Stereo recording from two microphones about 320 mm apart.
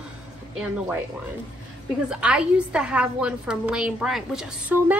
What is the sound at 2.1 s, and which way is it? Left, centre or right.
A woman's voice, centre.